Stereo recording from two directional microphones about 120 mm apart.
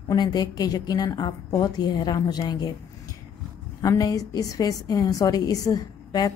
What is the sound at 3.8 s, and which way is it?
A woman's voice, 30° left (ahead or behind).